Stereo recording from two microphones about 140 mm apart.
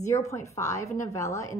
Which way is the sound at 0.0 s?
20° left (ahead or behind).